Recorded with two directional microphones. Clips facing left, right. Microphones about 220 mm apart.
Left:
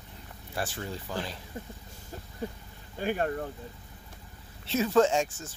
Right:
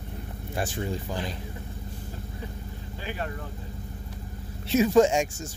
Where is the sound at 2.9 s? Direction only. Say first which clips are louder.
Left 6 dB; 50° left (ahead or behind).